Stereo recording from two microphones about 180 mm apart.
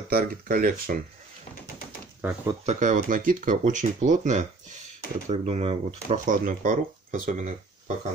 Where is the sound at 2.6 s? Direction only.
45° right (ahead or behind).